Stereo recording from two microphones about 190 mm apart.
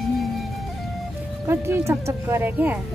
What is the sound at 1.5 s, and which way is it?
Speech, 15° right (ahead or behind).